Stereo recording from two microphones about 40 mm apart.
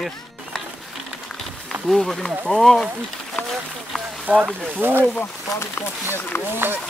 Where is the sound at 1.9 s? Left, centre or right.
Centre.